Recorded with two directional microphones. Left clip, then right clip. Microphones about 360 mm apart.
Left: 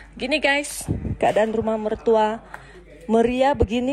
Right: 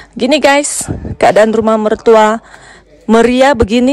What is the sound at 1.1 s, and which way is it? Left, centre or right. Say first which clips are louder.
Speech: right 12 dB; right.